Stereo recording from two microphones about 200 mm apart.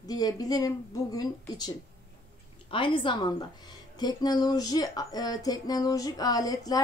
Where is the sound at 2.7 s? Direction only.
25° left (ahead or behind).